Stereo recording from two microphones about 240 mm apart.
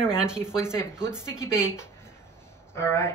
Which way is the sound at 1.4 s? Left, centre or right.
Centre.